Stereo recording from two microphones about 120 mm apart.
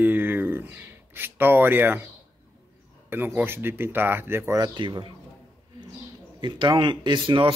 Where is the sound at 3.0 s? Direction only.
15° right (ahead or behind).